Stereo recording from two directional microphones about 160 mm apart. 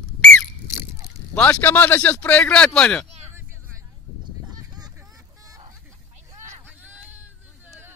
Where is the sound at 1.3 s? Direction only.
10° left (ahead or behind).